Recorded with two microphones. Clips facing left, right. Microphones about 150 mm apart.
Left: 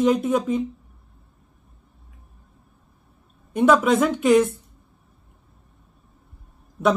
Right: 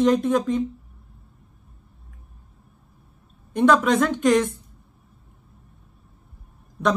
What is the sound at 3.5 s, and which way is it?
Speech, 5° left (ahead or behind).